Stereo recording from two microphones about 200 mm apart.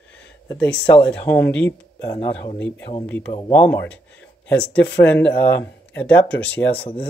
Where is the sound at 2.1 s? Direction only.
20° left (ahead or behind).